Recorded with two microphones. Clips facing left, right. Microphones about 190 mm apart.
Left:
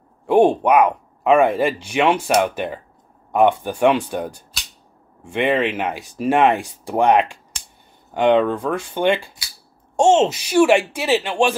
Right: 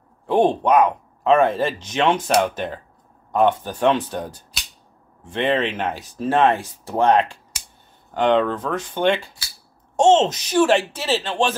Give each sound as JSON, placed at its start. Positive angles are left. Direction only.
{"t": 0.3, "sound": "speech", "side_deg": 10}